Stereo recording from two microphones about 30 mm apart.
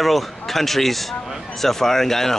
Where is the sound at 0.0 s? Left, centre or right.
Centre.